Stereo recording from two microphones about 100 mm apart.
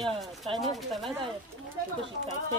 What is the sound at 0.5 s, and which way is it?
Speech, centre (ahead or behind).